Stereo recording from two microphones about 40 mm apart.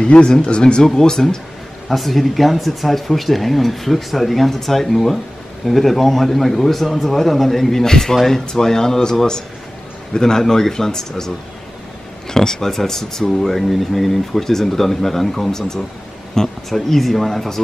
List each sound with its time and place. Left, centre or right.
0.0 s speech: left
0.8 s speech: centre
1.9 s speech: centre